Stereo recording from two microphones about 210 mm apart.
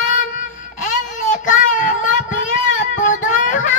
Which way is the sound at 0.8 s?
40° left (ahead or behind).